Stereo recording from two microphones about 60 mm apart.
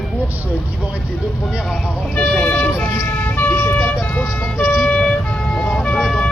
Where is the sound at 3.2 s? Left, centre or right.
Left.